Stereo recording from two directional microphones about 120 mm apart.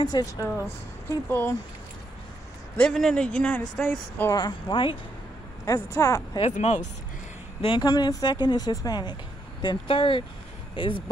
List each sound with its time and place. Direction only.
0.0 s speech: 30° left (ahead or behind)
1.3 s speech: 20° left (ahead or behind)
2.9 s speech: 5° left (ahead or behind)
4.3 s speech: 35° left (ahead or behind)
5.7 s speech: 25° left (ahead or behind)
6.4 s speech: 70° left (ahead or behind)
7.6 s speech: 40° left (ahead or behind)